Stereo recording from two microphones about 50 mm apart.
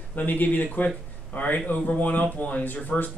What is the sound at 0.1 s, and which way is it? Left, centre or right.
Speech, left.